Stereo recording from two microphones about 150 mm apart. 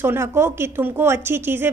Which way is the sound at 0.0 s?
15° right (ahead or behind).